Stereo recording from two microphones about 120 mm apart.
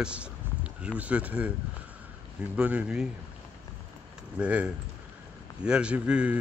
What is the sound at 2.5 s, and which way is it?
Speech, 10° right (ahead or behind).